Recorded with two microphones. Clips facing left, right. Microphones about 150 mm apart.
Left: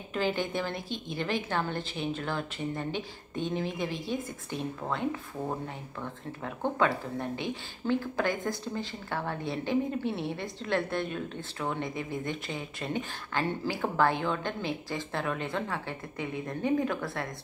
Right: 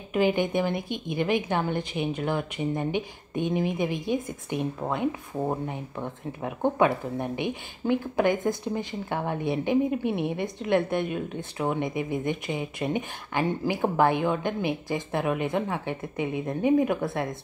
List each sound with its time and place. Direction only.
0.1 s a woman's voice: 15° right (ahead or behind)